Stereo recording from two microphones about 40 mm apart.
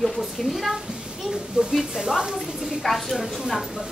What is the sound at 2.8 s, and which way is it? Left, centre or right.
Speech, centre.